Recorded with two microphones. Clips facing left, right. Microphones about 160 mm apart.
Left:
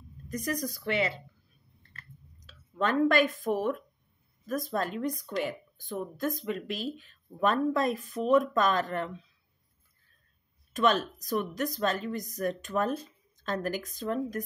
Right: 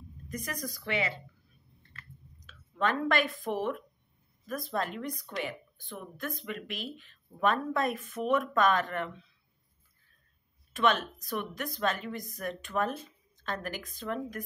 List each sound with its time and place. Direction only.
0.3 s a woman's voice: 40° left (ahead or behind)
2.8 s a woman's voice: 40° left (ahead or behind)
10.7 s a woman's voice: 40° left (ahead or behind)